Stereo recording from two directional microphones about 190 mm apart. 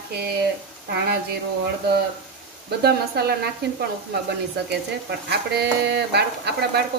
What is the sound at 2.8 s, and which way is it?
Dishes, 55° right (ahead or behind).